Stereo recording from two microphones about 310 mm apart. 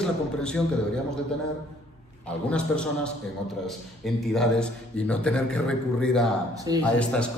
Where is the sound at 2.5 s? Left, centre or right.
Centre.